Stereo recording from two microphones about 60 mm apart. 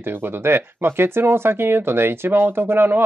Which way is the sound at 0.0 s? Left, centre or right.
Right.